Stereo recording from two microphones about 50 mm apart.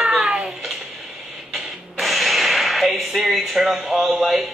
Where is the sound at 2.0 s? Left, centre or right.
Centre.